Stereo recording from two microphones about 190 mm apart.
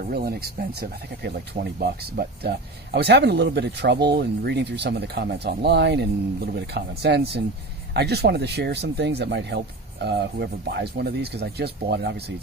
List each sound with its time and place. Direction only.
0.0 s speech: 50° right (ahead or behind)